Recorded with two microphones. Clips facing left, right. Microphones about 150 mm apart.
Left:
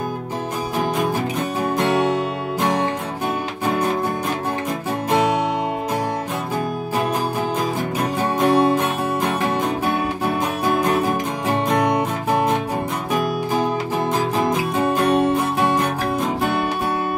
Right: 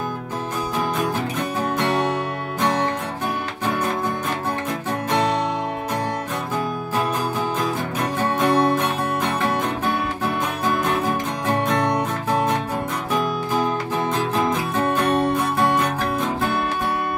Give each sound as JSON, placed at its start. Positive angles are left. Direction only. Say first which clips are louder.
{"t": 8.4, "sound": "music", "louder": "left 3 dB", "side_deg": 15}
{"t": 11.4, "sound": "music", "louder": "left 2 dB", "side_deg": 15}
{"t": 14.8, "sound": "music", "louder": "left 2 dB", "side_deg": 15}